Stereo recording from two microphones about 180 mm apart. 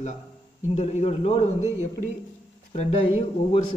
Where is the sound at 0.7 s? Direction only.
35° left (ahead or behind).